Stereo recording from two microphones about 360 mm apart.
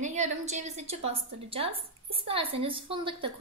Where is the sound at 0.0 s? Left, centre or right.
Centre.